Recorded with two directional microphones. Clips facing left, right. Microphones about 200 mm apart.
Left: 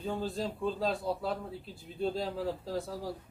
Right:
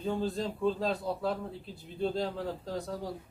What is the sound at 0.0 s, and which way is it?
Speech, centre (ahead or behind).